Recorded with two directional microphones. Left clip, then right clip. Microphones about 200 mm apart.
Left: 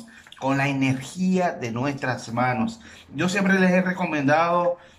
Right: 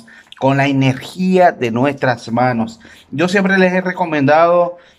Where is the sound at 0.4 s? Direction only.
45° right (ahead or behind).